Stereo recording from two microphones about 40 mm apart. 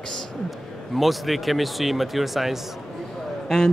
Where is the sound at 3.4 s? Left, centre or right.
Centre.